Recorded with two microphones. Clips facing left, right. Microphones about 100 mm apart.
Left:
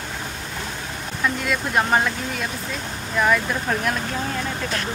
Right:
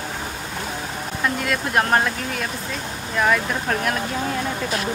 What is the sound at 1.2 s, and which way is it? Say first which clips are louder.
Speech: even; centre (ahead or behind).